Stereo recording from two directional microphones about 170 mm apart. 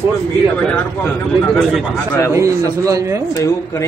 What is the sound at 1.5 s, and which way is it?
Speech, centre (ahead or behind).